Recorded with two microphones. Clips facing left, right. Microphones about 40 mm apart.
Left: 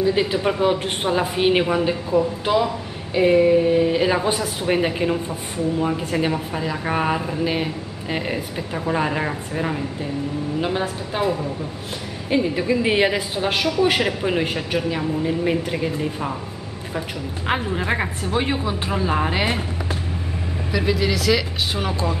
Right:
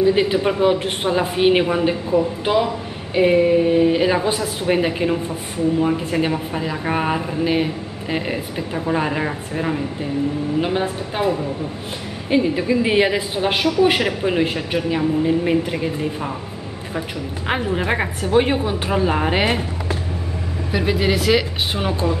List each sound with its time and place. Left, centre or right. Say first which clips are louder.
0.0 s a man's voice: right 3 dB; centre
17.5 s a man's voice: right 2 dB; centre
20.7 s speech: right 2 dB; right
21.7 s a man's voice: right 4 dB; centre